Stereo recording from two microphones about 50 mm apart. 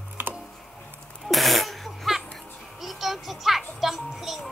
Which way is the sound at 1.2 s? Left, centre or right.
Centre.